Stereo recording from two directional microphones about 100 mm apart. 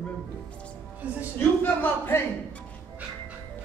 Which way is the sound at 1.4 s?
20° left (ahead or behind).